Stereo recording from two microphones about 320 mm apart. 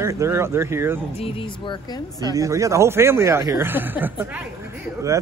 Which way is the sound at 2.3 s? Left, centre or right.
Centre.